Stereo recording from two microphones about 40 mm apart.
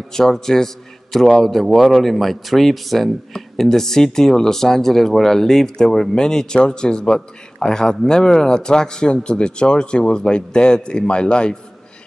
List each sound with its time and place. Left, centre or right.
0.1 s speech: centre